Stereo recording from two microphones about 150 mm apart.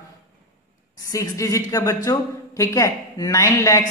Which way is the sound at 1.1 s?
20° left (ahead or behind).